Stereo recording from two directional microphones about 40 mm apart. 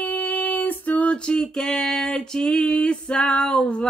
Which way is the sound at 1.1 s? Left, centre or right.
Left.